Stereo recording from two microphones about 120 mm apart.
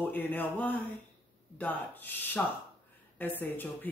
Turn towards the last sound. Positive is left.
turn(degrees=15)  # may be behind; listen again after turning